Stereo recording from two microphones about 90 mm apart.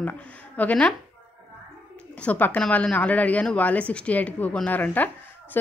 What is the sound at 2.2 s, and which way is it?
A woman's voice, 15° left (ahead or behind).